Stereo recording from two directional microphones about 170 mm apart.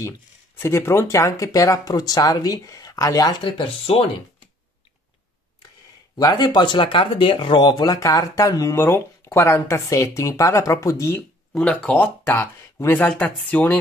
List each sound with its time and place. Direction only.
0.6 s speech: 15° left (ahead or behind); by 4.0 s 35° left (ahead or behind)
6.1 s speech: 25° left (ahead or behind)